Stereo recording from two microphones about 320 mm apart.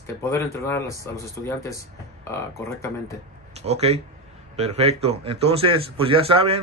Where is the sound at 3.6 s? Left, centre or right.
Centre.